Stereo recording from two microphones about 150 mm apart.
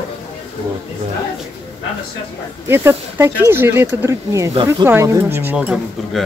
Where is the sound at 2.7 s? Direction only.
15° right (ahead or behind).